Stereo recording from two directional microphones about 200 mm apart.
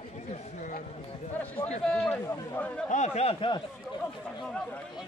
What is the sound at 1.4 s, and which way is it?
A man's voice, 5° left (ahead or behind).